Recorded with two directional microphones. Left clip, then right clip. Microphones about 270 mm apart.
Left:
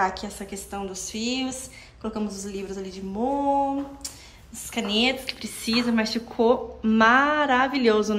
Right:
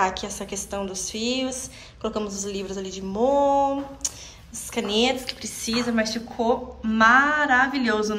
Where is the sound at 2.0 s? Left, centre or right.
Centre.